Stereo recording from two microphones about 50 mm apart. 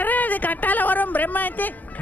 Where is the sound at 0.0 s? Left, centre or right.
Left.